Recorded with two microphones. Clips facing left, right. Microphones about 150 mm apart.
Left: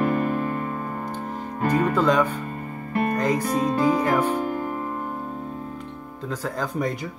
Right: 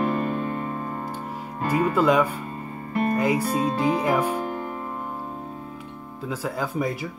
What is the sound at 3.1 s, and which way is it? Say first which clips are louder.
Music: right 2 dB; 10° right (ahead or behind).